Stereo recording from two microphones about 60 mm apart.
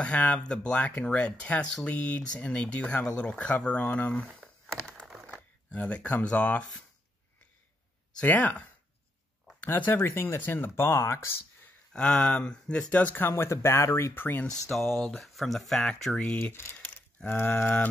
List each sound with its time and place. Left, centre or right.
0.0 s speech: centre
5.7 s speech: centre
8.2 s speech: left
11.9 s speech: centre
12.9 s speech: left
13.3 s speech: left
14.1 s speech: left
14.7 s speech: centre
16.7 s cattle: left